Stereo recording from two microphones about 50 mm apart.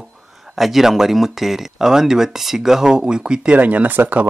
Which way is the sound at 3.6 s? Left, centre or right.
Right.